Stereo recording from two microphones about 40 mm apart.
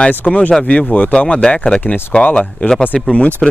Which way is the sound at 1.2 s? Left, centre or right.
Left.